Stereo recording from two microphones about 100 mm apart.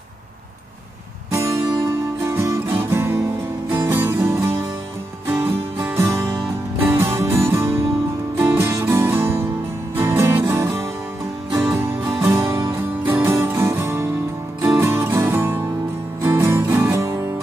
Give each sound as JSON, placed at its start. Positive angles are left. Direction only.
{"t": 1.3, "sound": "music", "side_deg": -30}